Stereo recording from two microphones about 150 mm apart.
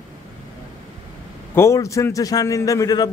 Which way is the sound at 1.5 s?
20° left (ahead or behind).